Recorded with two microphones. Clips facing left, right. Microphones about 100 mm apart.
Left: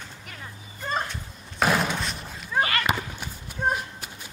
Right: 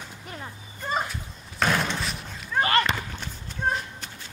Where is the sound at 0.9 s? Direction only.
10° right (ahead or behind).